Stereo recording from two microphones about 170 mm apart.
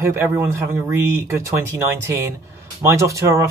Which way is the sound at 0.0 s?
15° right (ahead or behind).